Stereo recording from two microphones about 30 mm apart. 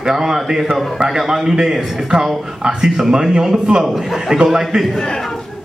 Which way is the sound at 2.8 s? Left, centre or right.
Centre.